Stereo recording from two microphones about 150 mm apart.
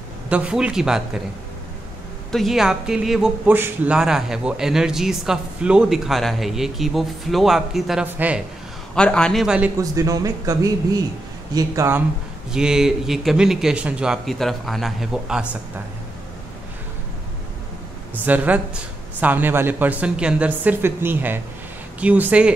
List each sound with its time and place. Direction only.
0.3 s speech: 5° right (ahead or behind)
2.3 s speech: centre (ahead or behind)
8.9 s speech: 5° left (ahead or behind)
9.8 s speech: 20° right (ahead or behind)
12.5 s speech: 5° right (ahead or behind)
18.1 s speech: 10° right (ahead or behind)